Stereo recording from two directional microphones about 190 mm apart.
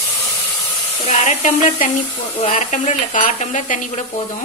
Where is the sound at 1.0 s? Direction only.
40° left (ahead or behind).